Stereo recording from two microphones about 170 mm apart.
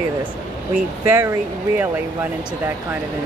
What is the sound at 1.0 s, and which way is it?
Speech, 15° right (ahead or behind).